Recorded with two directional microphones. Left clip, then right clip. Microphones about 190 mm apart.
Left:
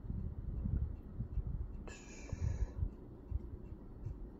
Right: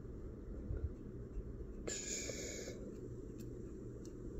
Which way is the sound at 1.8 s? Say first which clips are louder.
Right 9 dB; 25° right (ahead or behind).